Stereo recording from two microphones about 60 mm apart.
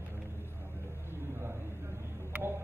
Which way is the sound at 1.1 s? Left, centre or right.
Right.